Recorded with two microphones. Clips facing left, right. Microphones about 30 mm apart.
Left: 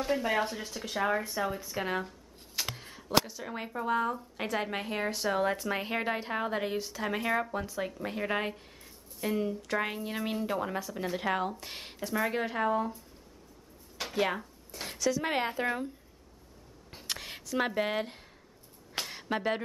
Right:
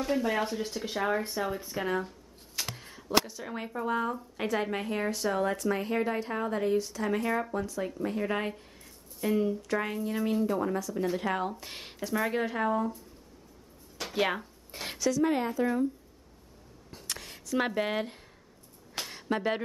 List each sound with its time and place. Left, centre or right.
0.0 s speech: centre
1.8 s speech: centre
2.0 s a sound: centre
3.3 s speech: centre
11.5 s speech: centre
14.1 s speech: centre
14.7 s a woman's voice: right
15.2 s speech: left
16.9 s a sound: centre
17.5 s speech: centre
18.9 s a sound: centre